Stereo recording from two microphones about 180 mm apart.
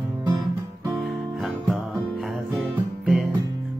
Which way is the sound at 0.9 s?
Centre (ahead or behind).